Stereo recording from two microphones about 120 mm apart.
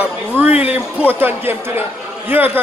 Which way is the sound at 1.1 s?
20° right (ahead or behind).